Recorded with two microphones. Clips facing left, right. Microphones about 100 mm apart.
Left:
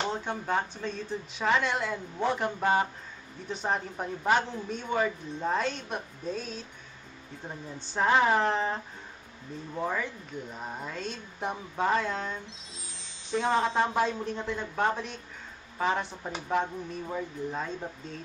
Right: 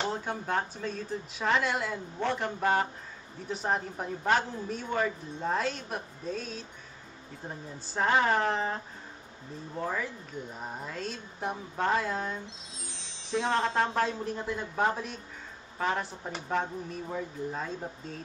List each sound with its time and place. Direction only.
0.0 s speech: 5° right (ahead or behind)
9.8 s speech: centre (ahead or behind)
12.8 s wind chime: 5° left (ahead or behind)
14.2 s speech: 5° right (ahead or behind)